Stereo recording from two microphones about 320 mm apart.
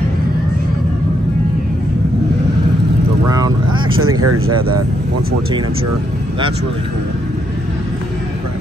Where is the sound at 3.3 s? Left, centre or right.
Centre.